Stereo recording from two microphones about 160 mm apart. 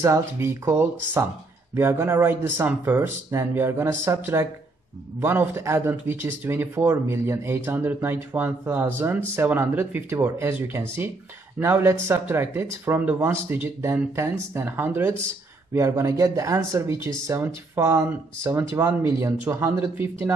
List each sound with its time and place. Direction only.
0.0 s speech: 15° right (ahead or behind)